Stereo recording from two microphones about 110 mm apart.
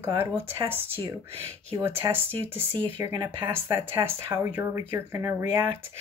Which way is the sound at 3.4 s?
20° right (ahead or behind).